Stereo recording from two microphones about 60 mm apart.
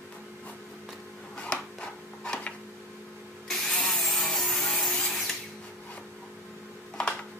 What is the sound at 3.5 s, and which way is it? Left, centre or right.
Wood, centre.